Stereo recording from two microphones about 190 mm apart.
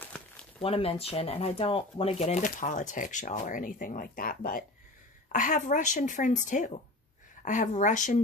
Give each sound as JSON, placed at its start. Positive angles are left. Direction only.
{"t": 0.6, "sound": "speech", "side_deg": 30}